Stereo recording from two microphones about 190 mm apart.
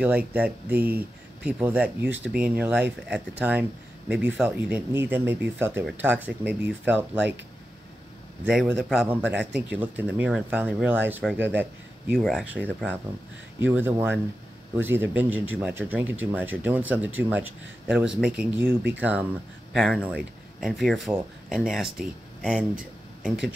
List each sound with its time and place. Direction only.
0.0 s speech: 5° right (ahead or behind)
8.5 s speech: 5° right (ahead or behind)